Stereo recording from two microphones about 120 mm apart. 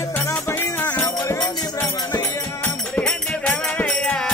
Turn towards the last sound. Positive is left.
turn(degrees=5)  # may be behind; listen again after turning